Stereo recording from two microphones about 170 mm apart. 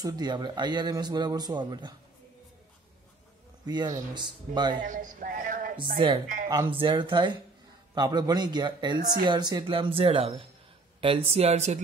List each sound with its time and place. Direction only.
0.0 s speech: 25° right (ahead or behind)
3.6 s speech: 25° right (ahead or behind)
4.8 s speech: 50° right (ahead or behind)
5.9 s speech: 30° right (ahead or behind)
6.2 s speech: 50° right (ahead or behind)
6.5 s speech: 25° right (ahead or behind)